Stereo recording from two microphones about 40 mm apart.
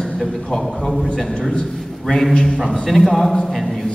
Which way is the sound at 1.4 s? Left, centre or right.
Left.